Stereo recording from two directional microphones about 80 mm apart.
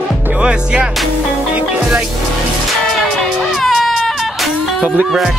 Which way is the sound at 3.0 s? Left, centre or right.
Centre.